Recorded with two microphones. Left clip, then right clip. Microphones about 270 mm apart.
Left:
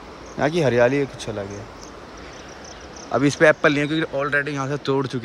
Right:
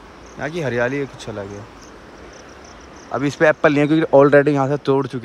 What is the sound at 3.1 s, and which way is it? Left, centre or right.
Speech, centre.